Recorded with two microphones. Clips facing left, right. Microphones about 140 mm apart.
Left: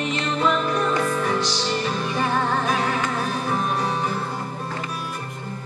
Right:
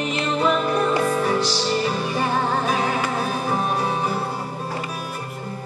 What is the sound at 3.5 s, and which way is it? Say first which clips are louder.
Music: right 1 dB; 35° right (ahead or behind).